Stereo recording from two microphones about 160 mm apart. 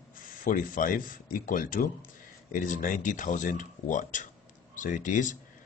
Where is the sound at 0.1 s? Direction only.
60° left (ahead or behind).